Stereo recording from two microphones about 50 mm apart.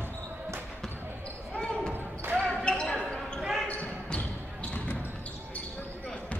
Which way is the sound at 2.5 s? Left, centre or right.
Centre.